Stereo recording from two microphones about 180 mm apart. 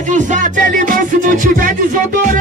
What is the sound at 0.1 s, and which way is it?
Music, 45° right (ahead or behind).